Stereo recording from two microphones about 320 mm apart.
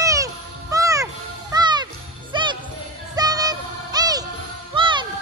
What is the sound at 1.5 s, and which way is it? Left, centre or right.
Music, centre.